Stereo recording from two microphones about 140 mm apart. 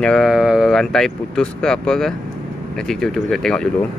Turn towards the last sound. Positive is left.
turn(degrees=5)  # may be behind; listen again after turning